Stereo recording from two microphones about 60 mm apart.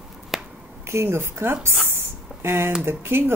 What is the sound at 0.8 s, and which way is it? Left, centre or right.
Speech, right.